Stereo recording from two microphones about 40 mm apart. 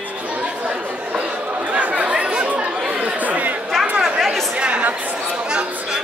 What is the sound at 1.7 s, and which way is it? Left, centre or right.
Chatter, right.